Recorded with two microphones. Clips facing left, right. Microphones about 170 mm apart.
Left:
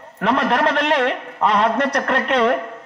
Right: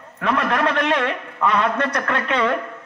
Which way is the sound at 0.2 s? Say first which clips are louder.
Left 3 dB; 30° left (ahead or behind).